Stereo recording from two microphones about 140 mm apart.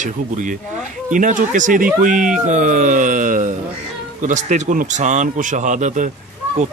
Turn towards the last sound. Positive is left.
turn(degrees=-60)  # may be behind; listen again after turning